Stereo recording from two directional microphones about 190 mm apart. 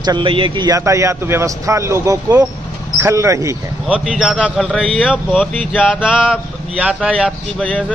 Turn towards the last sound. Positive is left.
turn(degrees=5)  # may be behind; listen again after turning